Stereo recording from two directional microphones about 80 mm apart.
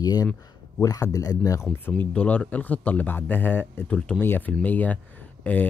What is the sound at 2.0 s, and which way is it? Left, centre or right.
Speech, centre.